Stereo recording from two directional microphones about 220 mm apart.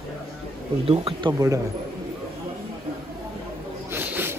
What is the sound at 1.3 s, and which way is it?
Speech, 15° right (ahead or behind).